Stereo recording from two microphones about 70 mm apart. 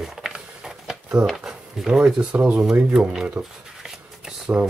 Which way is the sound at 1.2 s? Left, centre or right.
Centre.